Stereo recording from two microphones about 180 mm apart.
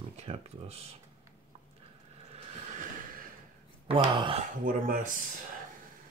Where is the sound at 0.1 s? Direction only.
35° right (ahead or behind).